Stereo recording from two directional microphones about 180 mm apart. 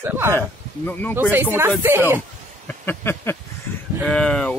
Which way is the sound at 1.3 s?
10° right (ahead or behind).